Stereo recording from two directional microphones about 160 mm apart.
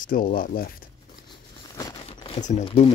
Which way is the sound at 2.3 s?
50° left (ahead or behind).